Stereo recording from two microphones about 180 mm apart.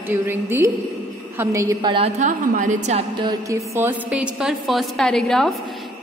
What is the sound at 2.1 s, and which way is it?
Speech, 45° right (ahead or behind).